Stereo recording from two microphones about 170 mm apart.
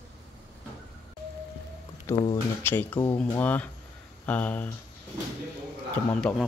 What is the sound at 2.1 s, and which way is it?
Speech, 15° left (ahead or behind).